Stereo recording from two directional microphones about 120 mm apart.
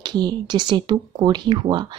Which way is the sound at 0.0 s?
35° right (ahead or behind).